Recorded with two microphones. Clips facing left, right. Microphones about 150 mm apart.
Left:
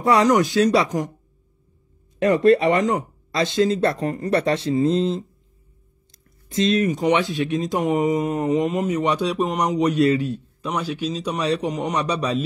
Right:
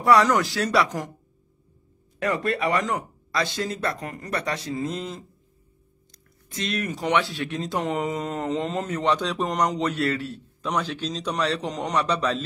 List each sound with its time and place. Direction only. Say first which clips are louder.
0.0 s speech: left 2 dB; 20° left (ahead or behind)
2.1 s speech: left 10 dB; 25° left (ahead or behind)
6.5 s speech: left 10 dB; 20° left (ahead or behind)